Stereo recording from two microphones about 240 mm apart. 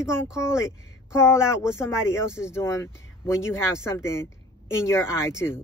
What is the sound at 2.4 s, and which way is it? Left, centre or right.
Speech, centre.